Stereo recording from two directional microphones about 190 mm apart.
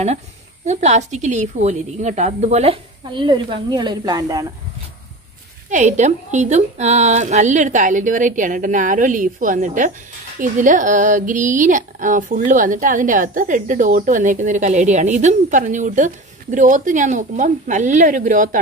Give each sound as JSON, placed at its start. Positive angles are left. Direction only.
{"t": 0.7, "sound": "a woman's voice", "side_deg": -40}
{"t": 5.7, "sound": "speech", "side_deg": -40}